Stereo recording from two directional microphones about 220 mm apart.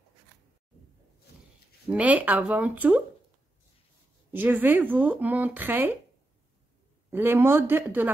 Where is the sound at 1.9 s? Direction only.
5° right (ahead or behind).